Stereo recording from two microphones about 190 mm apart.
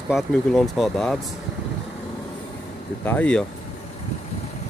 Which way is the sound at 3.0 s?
10° left (ahead or behind).